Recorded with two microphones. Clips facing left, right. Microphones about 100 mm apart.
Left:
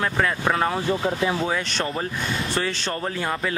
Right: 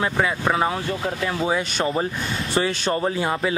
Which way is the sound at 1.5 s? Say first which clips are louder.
Right 3 dB; 15° right (ahead or behind).